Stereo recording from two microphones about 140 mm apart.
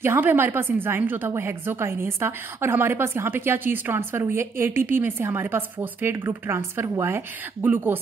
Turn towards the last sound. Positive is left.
turn(degrees=-15)  # may be behind; listen again after turning